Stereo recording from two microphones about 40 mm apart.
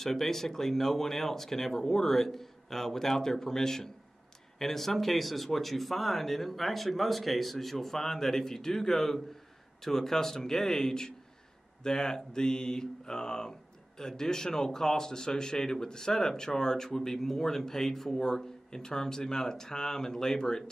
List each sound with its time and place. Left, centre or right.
0.0 s speech: centre